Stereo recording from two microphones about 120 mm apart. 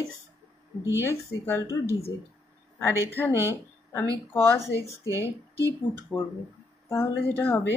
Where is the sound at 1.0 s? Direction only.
20° left (ahead or behind).